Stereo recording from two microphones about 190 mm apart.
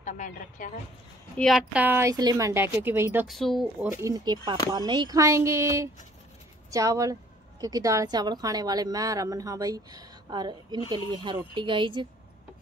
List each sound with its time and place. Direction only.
0.0 s a woman's voice: 40° left (ahead or behind)
1.4 s a woman's voice: centre (ahead or behind)
3.3 s speech: centre (ahead or behind)
4.0 s a woman's voice: 20° right (ahead or behind)